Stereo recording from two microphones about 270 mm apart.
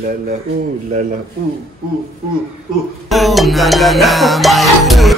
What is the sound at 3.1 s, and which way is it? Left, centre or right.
Music, centre.